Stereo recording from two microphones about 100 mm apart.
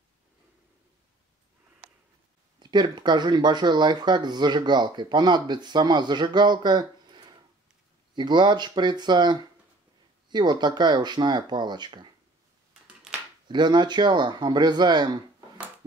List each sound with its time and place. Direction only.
2.6 s speech: 50° right (ahead or behind)
12.8 s a sound: 10° right (ahead or behind)
13.5 s speech: 50° right (ahead or behind)